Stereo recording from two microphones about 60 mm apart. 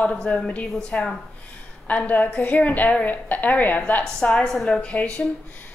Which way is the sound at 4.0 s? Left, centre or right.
Centre.